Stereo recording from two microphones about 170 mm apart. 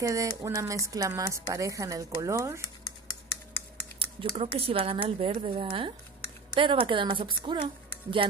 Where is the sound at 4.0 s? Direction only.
35° right (ahead or behind).